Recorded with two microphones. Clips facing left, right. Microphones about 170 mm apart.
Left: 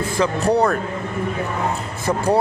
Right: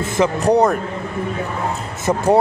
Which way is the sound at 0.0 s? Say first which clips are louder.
Right 2 dB; 20° right (ahead or behind).